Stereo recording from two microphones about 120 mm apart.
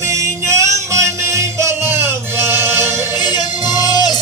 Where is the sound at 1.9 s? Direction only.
20° right (ahead or behind).